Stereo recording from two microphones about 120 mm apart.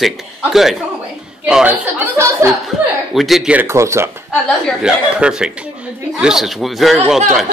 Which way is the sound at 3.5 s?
25° right (ahead or behind).